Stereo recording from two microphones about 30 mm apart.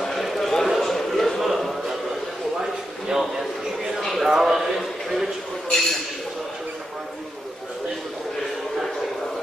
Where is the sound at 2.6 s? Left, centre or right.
Centre.